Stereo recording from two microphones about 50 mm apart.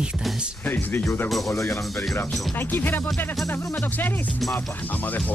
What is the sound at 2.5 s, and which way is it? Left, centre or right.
Music, left.